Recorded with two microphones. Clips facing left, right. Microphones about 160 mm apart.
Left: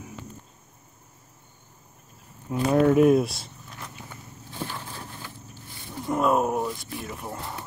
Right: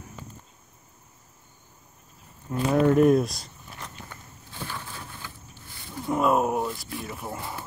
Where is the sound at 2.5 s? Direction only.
Centre (ahead or behind).